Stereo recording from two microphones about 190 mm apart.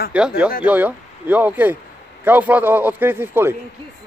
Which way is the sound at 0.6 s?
10° right (ahead or behind).